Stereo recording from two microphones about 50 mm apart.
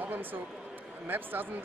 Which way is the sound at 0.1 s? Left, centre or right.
Right.